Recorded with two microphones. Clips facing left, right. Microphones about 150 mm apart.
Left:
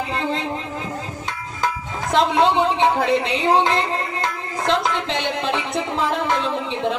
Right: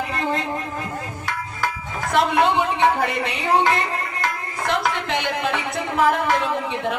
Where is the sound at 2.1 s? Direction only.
20° left (ahead or behind).